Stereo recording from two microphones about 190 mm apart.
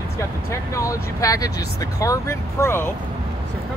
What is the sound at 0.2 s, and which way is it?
Speech, 15° left (ahead or behind).